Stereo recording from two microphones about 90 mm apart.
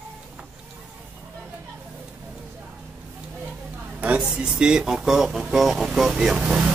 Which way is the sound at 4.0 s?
15° right (ahead or behind).